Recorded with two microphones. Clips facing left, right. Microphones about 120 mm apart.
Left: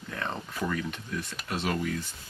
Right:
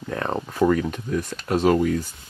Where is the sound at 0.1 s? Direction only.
45° right (ahead or behind).